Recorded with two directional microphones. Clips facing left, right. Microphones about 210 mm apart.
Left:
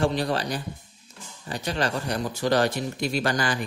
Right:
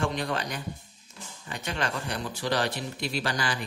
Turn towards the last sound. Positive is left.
turn(degrees=45)  # may be behind; listen again after turning